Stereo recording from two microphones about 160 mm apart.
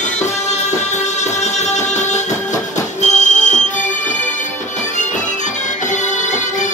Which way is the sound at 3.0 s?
50° left (ahead or behind).